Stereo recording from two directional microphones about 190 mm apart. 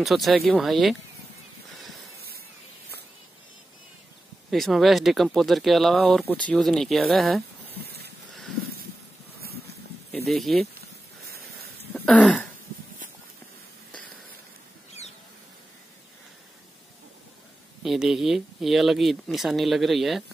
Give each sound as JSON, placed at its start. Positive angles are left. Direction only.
{"t": 0.0, "sound": "speech", "side_deg": 0}
{"t": 4.5, "sound": "speech", "side_deg": 0}
{"t": 7.8, "sound": "a sound", "side_deg": -55}
{"t": 8.3, "sound": "a sound", "side_deg": 0}
{"t": 10.2, "sound": "speech", "side_deg": 0}
{"t": 11.9, "sound": "throat clearing", "side_deg": 5}
{"t": 17.8, "sound": "speech", "side_deg": 0}